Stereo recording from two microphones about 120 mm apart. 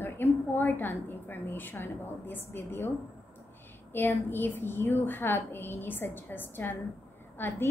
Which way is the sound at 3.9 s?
15° left (ahead or behind).